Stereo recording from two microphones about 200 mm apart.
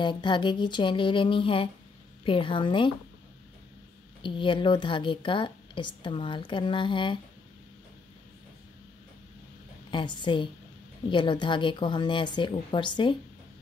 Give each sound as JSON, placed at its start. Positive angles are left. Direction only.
{"t": 0.0, "sound": "a woman's voice", "side_deg": 25}
{"t": 4.2, "sound": "a woman's voice", "side_deg": 25}
{"t": 9.8, "sound": "a woman's voice", "side_deg": 25}